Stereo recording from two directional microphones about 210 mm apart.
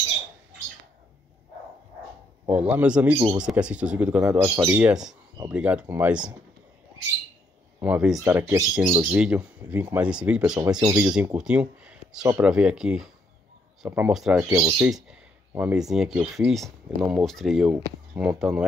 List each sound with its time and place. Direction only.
2.4 s speech: 10° right (ahead or behind)
7.8 s speech: 5° right (ahead or behind)
14.5 s speech: 20° right (ahead or behind)
15.0 s speech: 5° right (ahead or behind)